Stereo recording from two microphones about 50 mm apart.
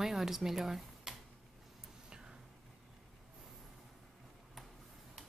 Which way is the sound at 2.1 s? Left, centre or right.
Centre.